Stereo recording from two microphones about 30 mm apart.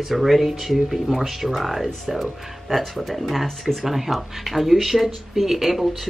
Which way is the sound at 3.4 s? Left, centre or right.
Centre.